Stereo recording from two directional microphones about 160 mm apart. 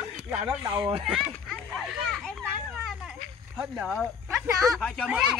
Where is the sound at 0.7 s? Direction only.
30° right (ahead or behind).